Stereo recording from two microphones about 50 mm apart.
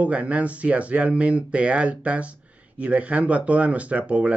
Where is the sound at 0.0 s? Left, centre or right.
Right.